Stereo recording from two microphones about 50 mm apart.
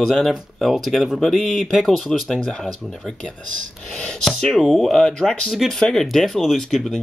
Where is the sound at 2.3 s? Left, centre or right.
Centre.